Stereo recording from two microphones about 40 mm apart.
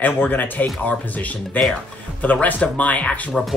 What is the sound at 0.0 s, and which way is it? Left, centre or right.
Speech, left.